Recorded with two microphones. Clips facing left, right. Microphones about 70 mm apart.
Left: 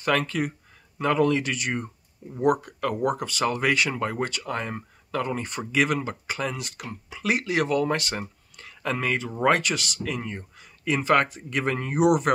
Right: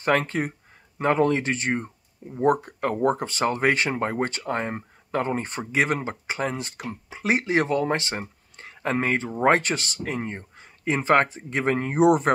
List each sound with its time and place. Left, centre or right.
0.0 s speech: right